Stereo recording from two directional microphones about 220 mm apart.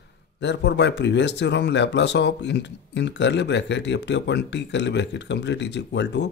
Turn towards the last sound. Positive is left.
turn(degrees=50)  # may be behind; listen again after turning